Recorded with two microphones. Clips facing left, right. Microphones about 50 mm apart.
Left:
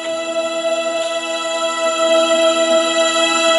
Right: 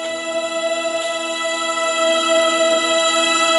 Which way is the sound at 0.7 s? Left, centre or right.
Left.